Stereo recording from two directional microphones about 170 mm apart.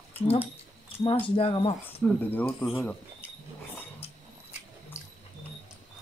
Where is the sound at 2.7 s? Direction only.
10° left (ahead or behind).